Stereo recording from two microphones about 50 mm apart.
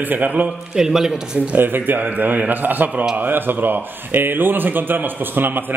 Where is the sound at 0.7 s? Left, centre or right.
Centre.